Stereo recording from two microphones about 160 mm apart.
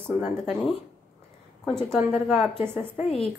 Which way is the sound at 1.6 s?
5° left (ahead or behind).